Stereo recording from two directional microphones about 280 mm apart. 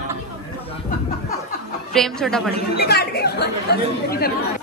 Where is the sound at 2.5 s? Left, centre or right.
Left.